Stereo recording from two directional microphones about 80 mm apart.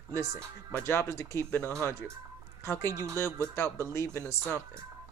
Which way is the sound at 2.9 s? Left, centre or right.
Right.